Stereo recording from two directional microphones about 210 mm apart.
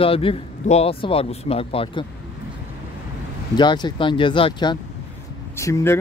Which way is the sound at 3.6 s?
20° left (ahead or behind).